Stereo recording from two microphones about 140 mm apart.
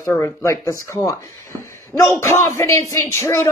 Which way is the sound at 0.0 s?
20° left (ahead or behind).